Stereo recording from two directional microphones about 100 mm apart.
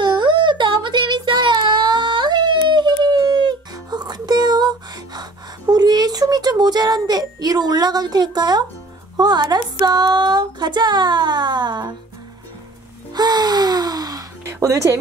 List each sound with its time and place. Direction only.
0.0 s child singing: 55° right (ahead or behind)
5.7 s a sound: 40° right (ahead or behind)
9.1 s speech: 45° right (ahead or behind)
13.1 s gasp: 45° right (ahead or behind)
14.5 s speech: 30° right (ahead or behind)